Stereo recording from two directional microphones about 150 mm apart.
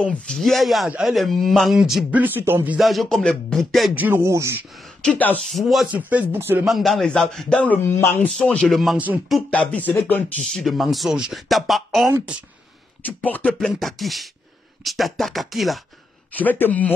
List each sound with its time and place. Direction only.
0.0 s a man's voice: 5° left (ahead or behind); by 2.8 s 15° right (ahead or behind)
2.8 s a man's voice: centre (ahead or behind)
3.9 s speech: 15° right (ahead or behind)
5.0 s a man's voice: 10° left (ahead or behind)
5.5 s speech: centre (ahead or behind)
6.6 s a man's voice: centre (ahead or behind)
9.5 s a man's voice: 10° left (ahead or behind)
10.4 s a man's voice: centre (ahead or behind)
13.0 s a man's voice: 10° left (ahead or behind)
16.3 s a man's voice: 10° left (ahead or behind)